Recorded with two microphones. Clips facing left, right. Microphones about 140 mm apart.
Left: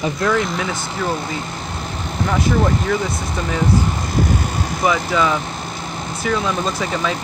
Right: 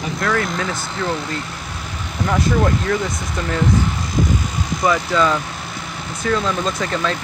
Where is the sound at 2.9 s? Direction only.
5° left (ahead or behind).